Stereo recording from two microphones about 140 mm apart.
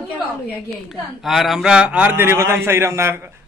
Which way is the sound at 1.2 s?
Centre (ahead or behind).